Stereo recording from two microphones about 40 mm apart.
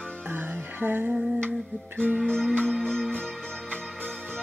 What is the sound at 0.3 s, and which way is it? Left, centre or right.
Music, right.